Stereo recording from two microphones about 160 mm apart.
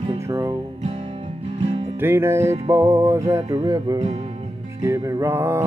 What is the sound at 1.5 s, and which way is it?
Music, 40° right (ahead or behind).